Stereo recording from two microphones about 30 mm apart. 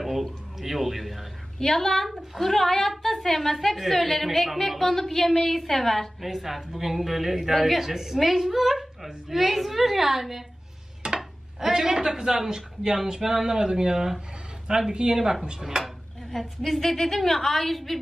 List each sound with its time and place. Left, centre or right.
0.0 s speech: centre
1.6 s a woman's voice: centre
7.8 s a woman's voice: centre
11.0 s a sound: right
11.7 s speech: centre
15.8 s a woman's voice: centre